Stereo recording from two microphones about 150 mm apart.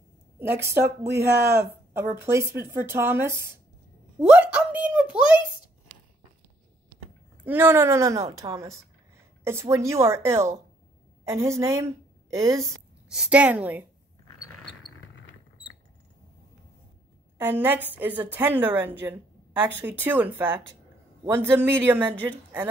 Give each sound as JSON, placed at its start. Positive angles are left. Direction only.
{"t": 0.4, "sound": "a woman's voice", "side_deg": -15}
{"t": 0.8, "sound": "speech", "side_deg": -90}
{"t": 1.3, "sound": "a woman's voice", "side_deg": -15}
{"t": 7.4, "sound": "a woman's voice", "side_deg": -15}
{"t": 13.1, "sound": "a woman's voice", "side_deg": -5}
{"t": 17.4, "sound": "a woman's voice", "side_deg": -15}